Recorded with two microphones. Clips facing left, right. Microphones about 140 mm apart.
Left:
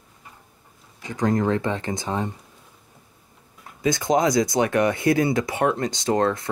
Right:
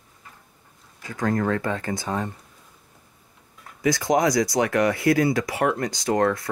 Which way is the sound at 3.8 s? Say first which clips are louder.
Even; 25° left (ahead or behind).